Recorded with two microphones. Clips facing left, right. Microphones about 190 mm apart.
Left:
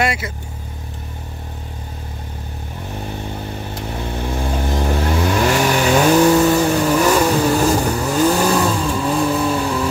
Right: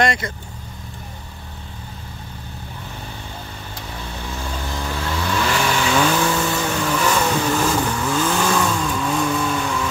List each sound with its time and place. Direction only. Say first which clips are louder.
0.0 s speech: right 1 dB; 5° left (ahead or behind)
4.2 s vehicle: left 7 dB; 55° left (ahead or behind); by 9.8 s 35° left (ahead or behind)